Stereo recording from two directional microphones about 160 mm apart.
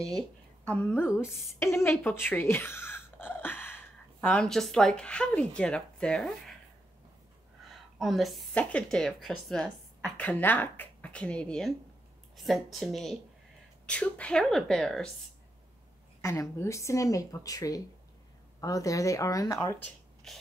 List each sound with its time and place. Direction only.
0.7 s a woman's voice: 10° left (ahead or behind)
7.6 s a woman's voice: centre (ahead or behind)
16.2 s speech: 20° left (ahead or behind)
20.3 s speech: centre (ahead or behind)